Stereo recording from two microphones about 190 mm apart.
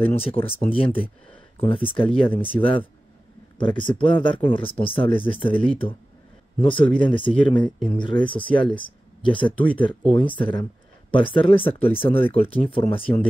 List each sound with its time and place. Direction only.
0.0 s speech: 30° left (ahead or behind)